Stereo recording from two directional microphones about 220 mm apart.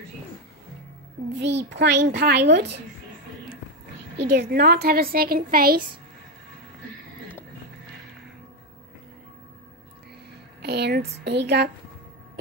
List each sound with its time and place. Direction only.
1.4 s a woman's voice: 50° right (ahead or behind)
4.3 s a woman's voice: 50° right (ahead or behind)
10.6 s a woman's voice: 50° right (ahead or behind)